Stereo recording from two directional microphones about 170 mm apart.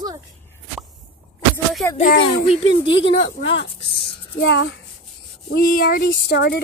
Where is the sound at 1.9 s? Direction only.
55° left (ahead or behind).